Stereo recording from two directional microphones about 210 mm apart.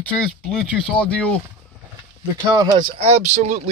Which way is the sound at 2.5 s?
20° right (ahead or behind).